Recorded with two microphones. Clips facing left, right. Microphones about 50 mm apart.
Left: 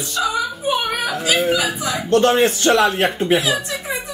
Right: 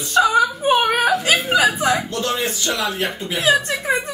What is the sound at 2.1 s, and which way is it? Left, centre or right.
Speech, left.